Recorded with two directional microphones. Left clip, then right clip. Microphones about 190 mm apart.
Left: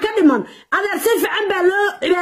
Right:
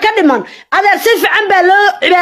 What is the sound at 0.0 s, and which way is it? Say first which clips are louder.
A woman's voice: right 5 dB; 20° left (ahead or behind).